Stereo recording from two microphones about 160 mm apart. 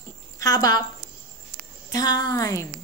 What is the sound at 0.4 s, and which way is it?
Speech, 25° left (ahead or behind).